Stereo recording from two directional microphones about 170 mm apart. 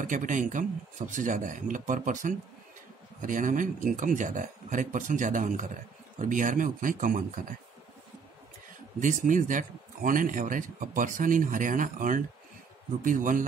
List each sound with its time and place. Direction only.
0.0 s speech: 50° right (ahead or behind)
9.0 s speech: 50° right (ahead or behind)